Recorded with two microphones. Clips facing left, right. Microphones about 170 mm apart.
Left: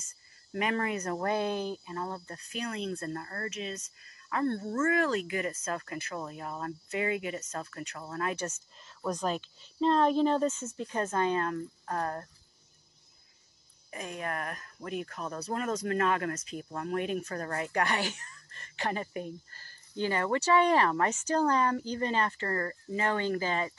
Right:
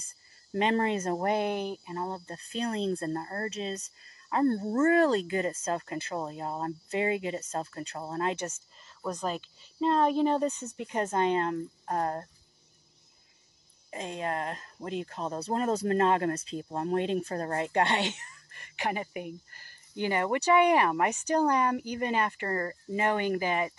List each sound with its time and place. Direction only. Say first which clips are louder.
0.0 s speech: right 1 dB; 30° right (ahead or behind)
8.7 s speech: left 1 dB; centre (ahead or behind); by 12.3 s 25° right (ahead or behind)
13.8 s speech: right 3 dB; 25° right (ahead or behind)